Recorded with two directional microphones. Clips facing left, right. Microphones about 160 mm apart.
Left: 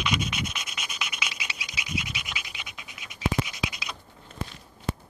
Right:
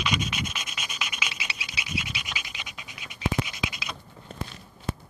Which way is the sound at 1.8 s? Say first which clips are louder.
Left 1 dB; 15° left (ahead or behind).